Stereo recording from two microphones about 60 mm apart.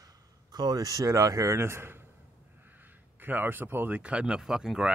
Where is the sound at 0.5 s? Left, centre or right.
Right.